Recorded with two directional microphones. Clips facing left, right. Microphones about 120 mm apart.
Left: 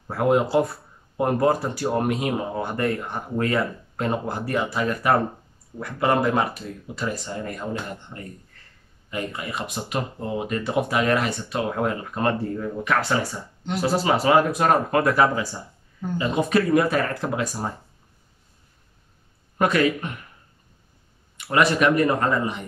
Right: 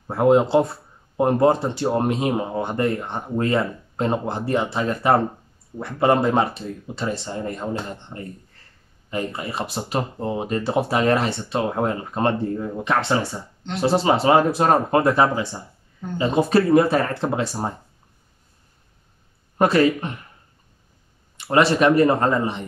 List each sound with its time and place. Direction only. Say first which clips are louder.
0.1 s speech: right 4 dB; 25° right (ahead or behind)
19.6 s speech: right 3 dB; 30° right (ahead or behind)
21.4 s speech: right 3 dB; 30° right (ahead or behind)